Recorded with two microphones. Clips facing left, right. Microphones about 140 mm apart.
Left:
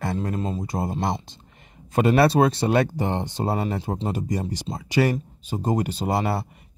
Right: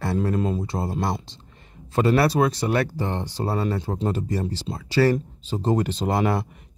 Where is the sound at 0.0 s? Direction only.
50° left (ahead or behind).